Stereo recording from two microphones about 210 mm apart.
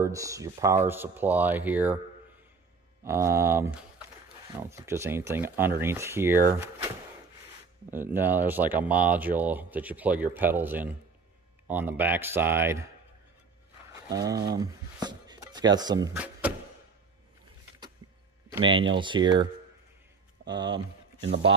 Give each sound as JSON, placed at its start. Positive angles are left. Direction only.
{"t": 0.0, "sound": "speech", "side_deg": -15}
{"t": 3.0, "sound": "speech", "side_deg": -10}
{"t": 7.9, "sound": "speech", "side_deg": -10}
{"t": 13.9, "sound": "a sound", "side_deg": -15}
{"t": 14.3, "sound": "speech", "side_deg": -50}
{"t": 14.6, "sound": "a sound", "side_deg": -20}
{"t": 16.2, "sound": "music", "side_deg": -5}
{"t": 18.6, "sound": "speech", "side_deg": -25}
{"t": 20.4, "sound": "a sound", "side_deg": -50}
{"t": 21.2, "sound": "speech", "side_deg": -60}